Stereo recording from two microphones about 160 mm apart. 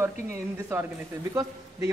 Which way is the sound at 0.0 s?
15° right (ahead or behind).